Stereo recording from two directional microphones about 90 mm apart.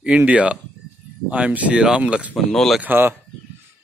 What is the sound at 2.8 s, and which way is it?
Speech, 25° right (ahead or behind).